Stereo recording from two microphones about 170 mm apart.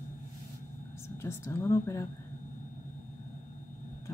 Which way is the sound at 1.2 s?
15° left (ahead or behind).